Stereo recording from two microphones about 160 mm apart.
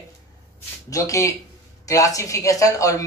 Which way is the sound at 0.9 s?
20° left (ahead or behind).